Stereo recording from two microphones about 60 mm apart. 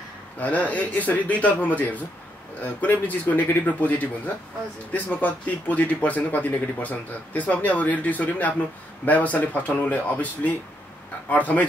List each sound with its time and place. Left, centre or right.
0.4 s speech: left